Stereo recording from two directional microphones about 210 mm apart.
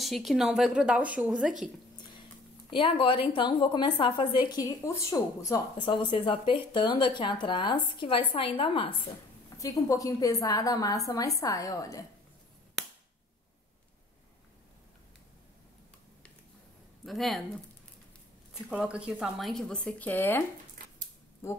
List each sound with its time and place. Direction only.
0.0 s speech: centre (ahead or behind)
2.7 s a woman's voice: 25° left (ahead or behind)
17.0 s speech: centre (ahead or behind)
18.7 s a woman's voice: 5° right (ahead or behind); by 21.6 s 10° left (ahead or behind)